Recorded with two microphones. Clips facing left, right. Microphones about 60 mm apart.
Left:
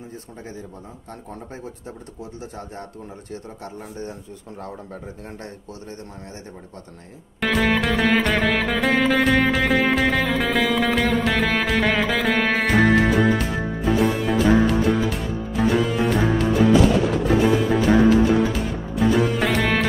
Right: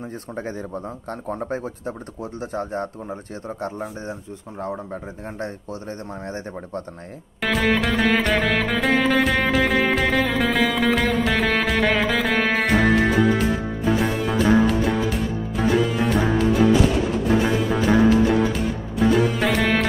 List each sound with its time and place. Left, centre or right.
1.3 s speech: right
7.3 s music: centre